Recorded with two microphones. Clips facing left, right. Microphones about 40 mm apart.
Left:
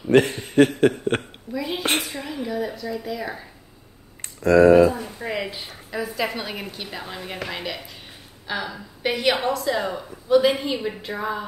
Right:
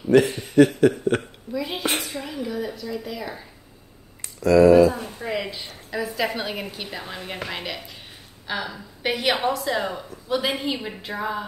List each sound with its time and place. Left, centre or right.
0.1 s speech: left
1.5 s a woman's voice: centre
4.4 s speech: left
5.2 s a woman's voice: centre